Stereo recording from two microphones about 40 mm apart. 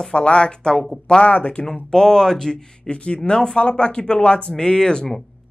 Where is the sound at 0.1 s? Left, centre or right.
Left.